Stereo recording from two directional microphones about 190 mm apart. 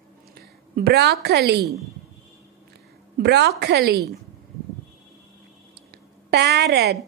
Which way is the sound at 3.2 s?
60° right (ahead or behind).